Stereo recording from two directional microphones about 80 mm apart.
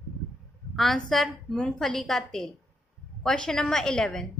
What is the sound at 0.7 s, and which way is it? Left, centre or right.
A woman's voice, centre.